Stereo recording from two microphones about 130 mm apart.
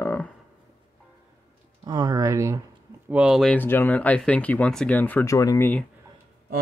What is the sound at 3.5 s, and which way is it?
Speech, 15° left (ahead or behind).